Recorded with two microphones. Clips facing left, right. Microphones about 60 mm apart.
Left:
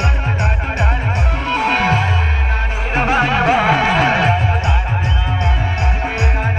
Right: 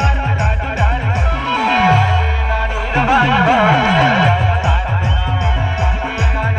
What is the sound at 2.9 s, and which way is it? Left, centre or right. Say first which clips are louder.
Music: right 3 dB; centre.